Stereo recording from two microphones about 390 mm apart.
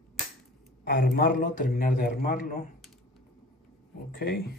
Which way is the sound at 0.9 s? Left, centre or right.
Left.